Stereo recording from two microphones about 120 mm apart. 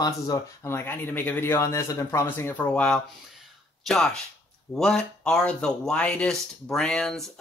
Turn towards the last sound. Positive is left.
turn(degrees=5)  # may be behind; listen again after turning